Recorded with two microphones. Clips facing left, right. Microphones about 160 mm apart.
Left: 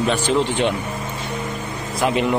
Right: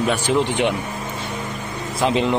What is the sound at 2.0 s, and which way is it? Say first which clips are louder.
Speech: even; 25° right (ahead or behind).